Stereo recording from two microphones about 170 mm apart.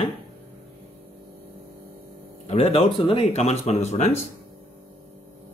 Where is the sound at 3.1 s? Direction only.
35° left (ahead or behind).